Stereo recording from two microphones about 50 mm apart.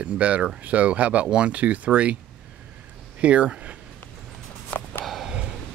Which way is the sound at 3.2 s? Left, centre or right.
Right.